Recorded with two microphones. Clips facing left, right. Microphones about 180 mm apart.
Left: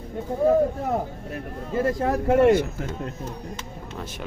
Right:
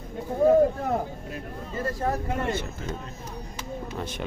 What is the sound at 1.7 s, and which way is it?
Speech, 75° left (ahead or behind).